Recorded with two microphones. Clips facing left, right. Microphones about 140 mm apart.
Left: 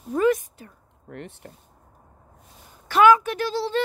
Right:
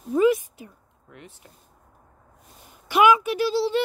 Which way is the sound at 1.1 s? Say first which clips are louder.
Left 8 dB; 60° left (ahead or behind).